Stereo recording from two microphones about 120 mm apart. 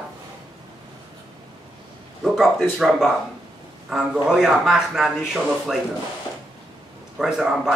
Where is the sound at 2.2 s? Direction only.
5° right (ahead or behind).